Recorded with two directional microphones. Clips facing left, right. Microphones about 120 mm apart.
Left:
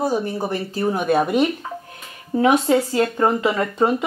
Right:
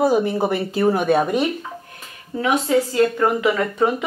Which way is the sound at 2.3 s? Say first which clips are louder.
Left 2 dB; 30° left (ahead or behind).